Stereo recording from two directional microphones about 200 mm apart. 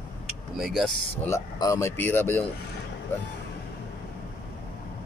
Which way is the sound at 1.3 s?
15° left (ahead or behind).